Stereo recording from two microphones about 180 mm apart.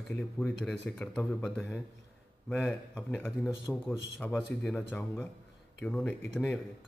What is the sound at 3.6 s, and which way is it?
Speech, 20° left (ahead or behind).